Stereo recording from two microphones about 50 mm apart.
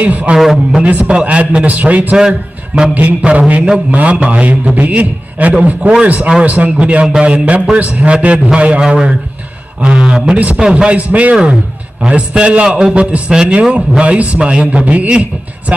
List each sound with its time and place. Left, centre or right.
0.0 s a man's voice: right
0.4 s a man's voice: centre
0.8 s a man's voice: right
2.1 s a man's voice: centre
2.9 s a man's voice: right
9.9 s a man's voice: centre